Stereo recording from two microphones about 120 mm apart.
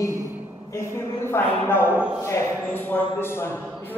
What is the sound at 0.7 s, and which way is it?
A woman's voice, 20° left (ahead or behind).